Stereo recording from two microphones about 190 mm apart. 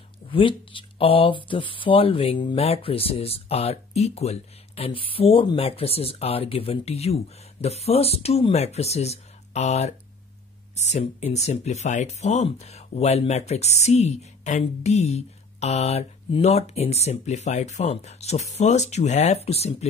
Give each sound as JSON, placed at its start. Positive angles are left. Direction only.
{"t": 0.3, "sound": "speech", "side_deg": 25}